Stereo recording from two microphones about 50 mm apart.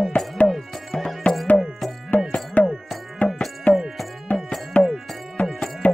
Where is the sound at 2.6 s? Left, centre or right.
Left.